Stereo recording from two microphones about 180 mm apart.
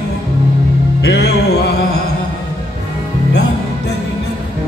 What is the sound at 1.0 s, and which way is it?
Music, 65° left (ahead or behind).